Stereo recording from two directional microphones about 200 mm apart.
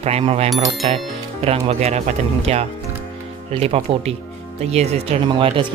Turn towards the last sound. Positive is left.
turn(degrees=-25)  # may be behind; listen again after turning